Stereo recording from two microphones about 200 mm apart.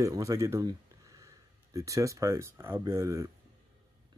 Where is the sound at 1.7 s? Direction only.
15° right (ahead or behind).